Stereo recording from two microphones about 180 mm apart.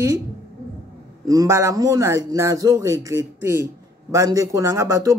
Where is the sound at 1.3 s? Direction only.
15° right (ahead or behind).